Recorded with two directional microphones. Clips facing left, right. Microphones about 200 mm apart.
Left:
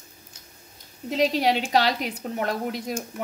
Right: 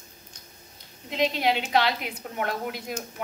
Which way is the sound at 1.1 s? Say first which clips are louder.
Left 3 dB; 35° left (ahead or behind).